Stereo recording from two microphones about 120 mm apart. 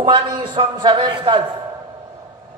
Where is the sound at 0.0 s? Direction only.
40° right (ahead or behind).